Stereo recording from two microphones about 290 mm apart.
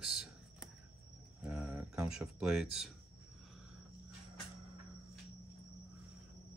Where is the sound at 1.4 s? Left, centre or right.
Centre.